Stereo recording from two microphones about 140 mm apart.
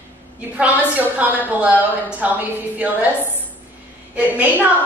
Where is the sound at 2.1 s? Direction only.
10° right (ahead or behind).